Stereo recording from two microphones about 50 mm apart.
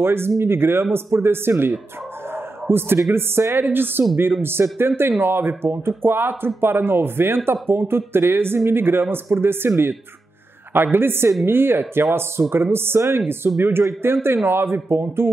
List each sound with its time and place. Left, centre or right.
0.0 s speech: right
2.9 s speech: right